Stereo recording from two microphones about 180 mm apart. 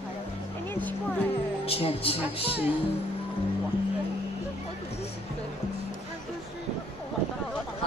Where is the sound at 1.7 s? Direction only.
30° left (ahead or behind).